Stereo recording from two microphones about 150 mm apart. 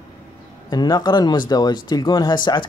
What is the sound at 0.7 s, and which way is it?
Speech, 25° left (ahead or behind).